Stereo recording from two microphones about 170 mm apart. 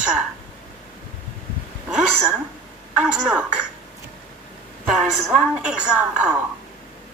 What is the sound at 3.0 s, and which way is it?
Speech, 5° right (ahead or behind).